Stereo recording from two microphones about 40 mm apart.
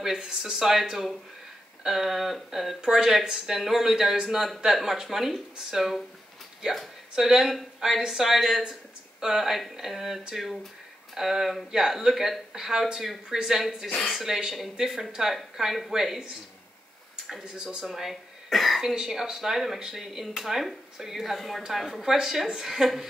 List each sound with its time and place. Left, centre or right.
0.0 s speech: centre
7.2 s speech: centre
17.6 s speech: centre
17.8 s speech: centre